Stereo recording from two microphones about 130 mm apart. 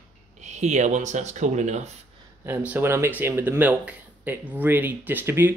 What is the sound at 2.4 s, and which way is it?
Speech, 15° right (ahead or behind).